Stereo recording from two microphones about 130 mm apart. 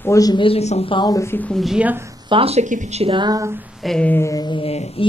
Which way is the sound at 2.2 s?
45° right (ahead or behind).